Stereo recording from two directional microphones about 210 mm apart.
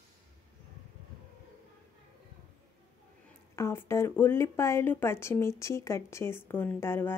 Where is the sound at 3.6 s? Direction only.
10° left (ahead or behind).